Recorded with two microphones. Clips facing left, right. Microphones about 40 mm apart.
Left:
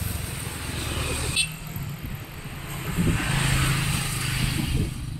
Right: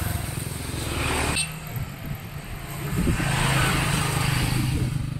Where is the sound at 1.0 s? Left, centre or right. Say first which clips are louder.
Right 9 dB; right.